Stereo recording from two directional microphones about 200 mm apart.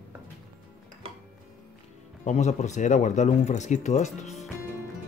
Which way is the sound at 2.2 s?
35° left (ahead or behind).